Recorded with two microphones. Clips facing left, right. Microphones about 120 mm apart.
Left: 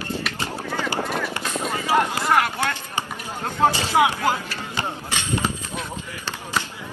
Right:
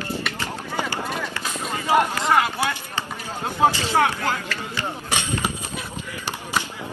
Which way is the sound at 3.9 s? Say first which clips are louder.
Left 2 dB; 15° left (ahead or behind).